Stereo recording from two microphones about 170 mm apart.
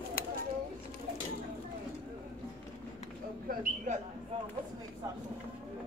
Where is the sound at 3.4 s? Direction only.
50° right (ahead or behind).